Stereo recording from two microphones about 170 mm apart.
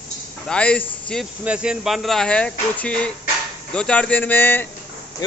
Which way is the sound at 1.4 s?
5° right (ahead or behind).